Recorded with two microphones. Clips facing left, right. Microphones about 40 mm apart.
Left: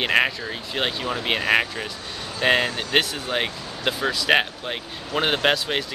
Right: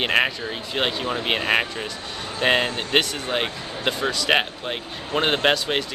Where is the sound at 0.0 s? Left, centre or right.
Centre.